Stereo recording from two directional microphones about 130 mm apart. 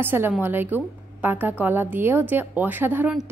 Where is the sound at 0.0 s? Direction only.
15° right (ahead or behind).